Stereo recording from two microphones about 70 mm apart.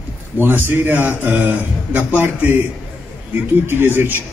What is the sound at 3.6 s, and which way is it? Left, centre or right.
Speech, right.